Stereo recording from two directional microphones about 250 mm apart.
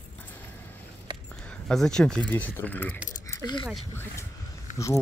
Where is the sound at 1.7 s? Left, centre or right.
Centre.